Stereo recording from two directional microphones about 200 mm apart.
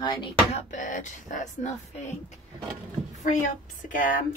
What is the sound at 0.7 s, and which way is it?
Speech, 40° left (ahead or behind).